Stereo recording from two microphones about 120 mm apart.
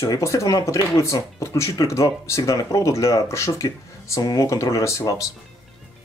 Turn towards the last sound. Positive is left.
turn(degrees=25)  # may be behind; listen again after turning